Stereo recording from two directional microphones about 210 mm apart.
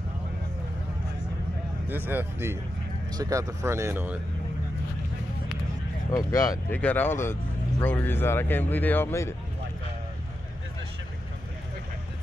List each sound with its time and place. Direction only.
1.9 s speech: 10° right (ahead or behind)
6.1 s speech: 15° left (ahead or behind)